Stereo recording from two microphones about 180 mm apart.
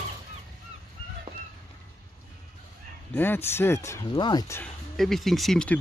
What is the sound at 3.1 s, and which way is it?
Speech, 10° left (ahead or behind).